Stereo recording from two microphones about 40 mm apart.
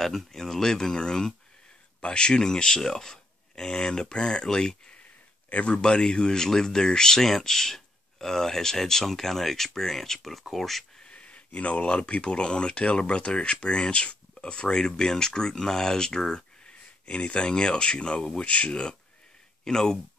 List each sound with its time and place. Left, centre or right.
0.0 s speech: centre
5.5 s speech: left
5.8 s speech: left; by 10.9 s centre
11.1 s speech: left
17.0 s speech: left
19.6 s speech: centre